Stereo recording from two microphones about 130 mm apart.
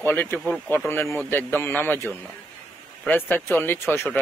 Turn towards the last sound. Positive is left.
turn(degrees=15)  # may be behind; listen again after turning